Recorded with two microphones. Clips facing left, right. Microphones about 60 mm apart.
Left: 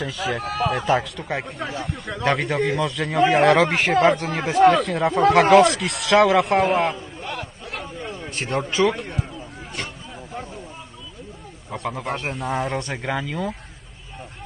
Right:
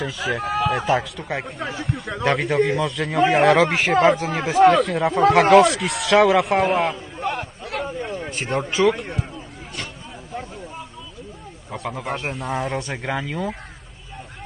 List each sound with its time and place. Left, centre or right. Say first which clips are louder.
0.0 s a man's voice: right 1 dB; centre
7.2 s a sound: right 5 dB; right
8.3 s a man's voice: left 2 dB; centre
11.7 s a man's voice: even; centre